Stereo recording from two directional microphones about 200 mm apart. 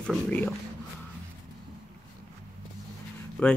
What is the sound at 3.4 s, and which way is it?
Speech, 5° left (ahead or behind).